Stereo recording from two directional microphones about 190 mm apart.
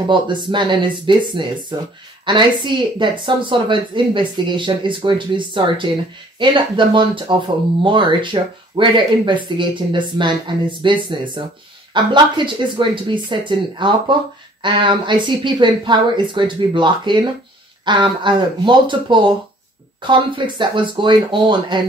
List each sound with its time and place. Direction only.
0.1 s speech: 25° right (ahead or behind)